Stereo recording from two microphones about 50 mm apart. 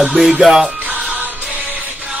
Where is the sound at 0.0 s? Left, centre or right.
Centre.